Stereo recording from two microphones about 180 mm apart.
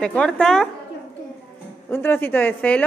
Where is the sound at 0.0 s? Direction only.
5° left (ahead or behind).